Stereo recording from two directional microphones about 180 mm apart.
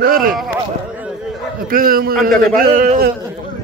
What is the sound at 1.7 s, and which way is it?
A man's voice, 50° right (ahead or behind).